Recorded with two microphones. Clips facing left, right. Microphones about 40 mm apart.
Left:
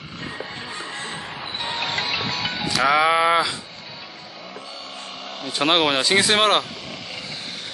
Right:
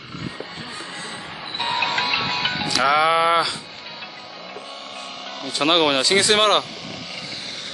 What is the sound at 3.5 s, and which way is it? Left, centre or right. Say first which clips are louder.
Music: right 1 dB; right.